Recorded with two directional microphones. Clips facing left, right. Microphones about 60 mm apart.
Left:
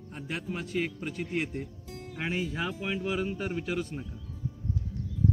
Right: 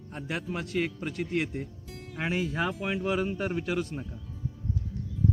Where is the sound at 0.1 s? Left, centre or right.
Right.